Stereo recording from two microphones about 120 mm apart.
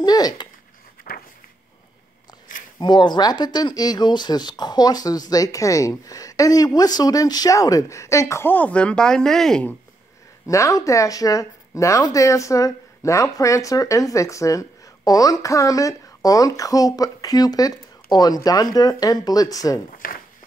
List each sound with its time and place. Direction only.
0.0 s a sound: 35° left (ahead or behind)
2.8 s speech: 40° left (ahead or behind); by 9.8 s 5° left (ahead or behind)
10.4 s speech: 25° left (ahead or behind)